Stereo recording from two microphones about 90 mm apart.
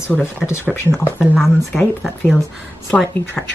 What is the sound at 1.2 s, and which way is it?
Speech, 5° right (ahead or behind).